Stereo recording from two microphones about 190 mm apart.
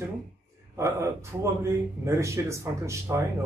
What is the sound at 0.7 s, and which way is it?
Speech, 15° right (ahead or behind).